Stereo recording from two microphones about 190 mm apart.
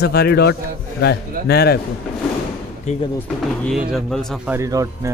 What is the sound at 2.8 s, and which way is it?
Speech, 35° left (ahead or behind).